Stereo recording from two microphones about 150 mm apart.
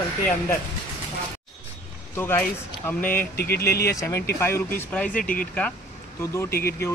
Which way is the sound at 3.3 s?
90° left.